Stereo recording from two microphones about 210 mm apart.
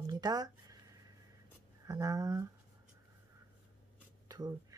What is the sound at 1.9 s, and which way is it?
Speech, 15° right (ahead or behind).